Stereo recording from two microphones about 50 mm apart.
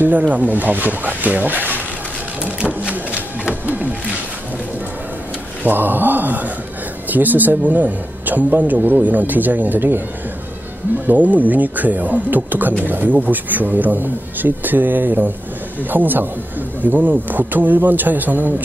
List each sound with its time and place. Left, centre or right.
0.2 s a man's voice: right
2.4 s a sound: right
3.6 s wild animals: right
5.6 s a man's voice: right
11.1 s a man's voice: right